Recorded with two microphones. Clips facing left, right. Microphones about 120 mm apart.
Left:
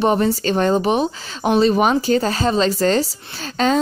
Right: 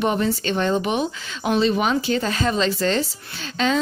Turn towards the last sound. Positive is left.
turn(degrees=40)  # may be behind; listen again after turning